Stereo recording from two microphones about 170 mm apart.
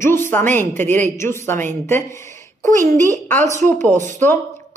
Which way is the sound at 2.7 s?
15° left (ahead or behind).